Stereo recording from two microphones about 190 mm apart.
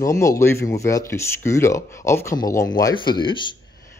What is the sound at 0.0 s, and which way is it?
Speech, 15° left (ahead or behind).